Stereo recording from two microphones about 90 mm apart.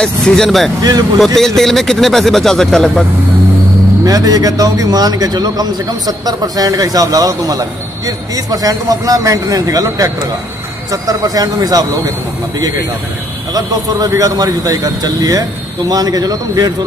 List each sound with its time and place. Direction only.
0.0 s speech: 5° left (ahead or behind)
4.0 s a man's voice: 45° right (ahead or behind)
13.5 s a man's voice: 40° right (ahead or behind)